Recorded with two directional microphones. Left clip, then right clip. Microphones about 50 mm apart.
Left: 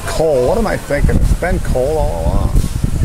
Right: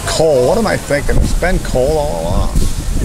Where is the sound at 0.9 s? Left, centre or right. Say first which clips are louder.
Right 2 dB; left.